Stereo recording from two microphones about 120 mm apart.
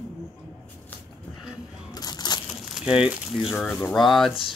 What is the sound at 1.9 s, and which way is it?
Crushing, 35° left (ahead or behind).